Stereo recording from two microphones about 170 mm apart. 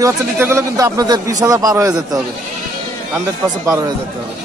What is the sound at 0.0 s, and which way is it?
Speech, 15° right (ahead or behind).